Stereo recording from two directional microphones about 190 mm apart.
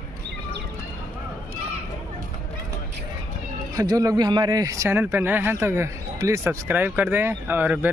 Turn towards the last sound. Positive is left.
turn(degrees=-10)  # may be behind; listen again after turning